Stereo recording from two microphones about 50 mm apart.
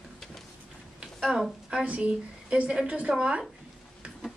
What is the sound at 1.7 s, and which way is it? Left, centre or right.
A woman's voice, right.